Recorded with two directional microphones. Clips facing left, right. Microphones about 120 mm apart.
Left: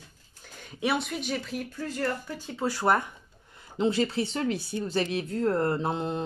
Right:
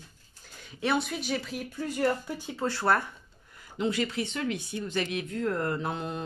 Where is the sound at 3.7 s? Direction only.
30° left (ahead or behind).